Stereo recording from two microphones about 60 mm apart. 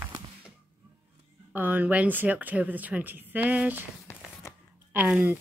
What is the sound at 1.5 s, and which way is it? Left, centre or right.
A woman's voice, right.